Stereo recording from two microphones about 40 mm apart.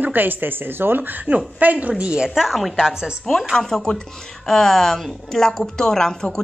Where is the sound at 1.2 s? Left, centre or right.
Right.